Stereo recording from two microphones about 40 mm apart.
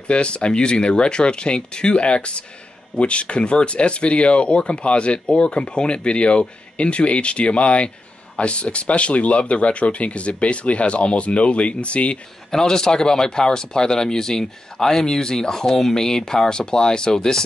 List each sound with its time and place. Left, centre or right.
0.1 s speech: left
12.4 s speech: centre